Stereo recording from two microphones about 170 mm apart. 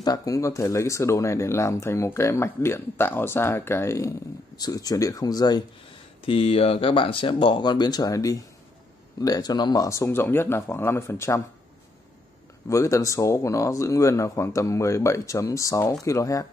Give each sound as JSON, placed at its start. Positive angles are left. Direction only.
{"t": 0.0, "sound": "speech", "side_deg": 20}
{"t": 6.2, "sound": "speech", "side_deg": 35}
{"t": 12.6, "sound": "speech", "side_deg": 20}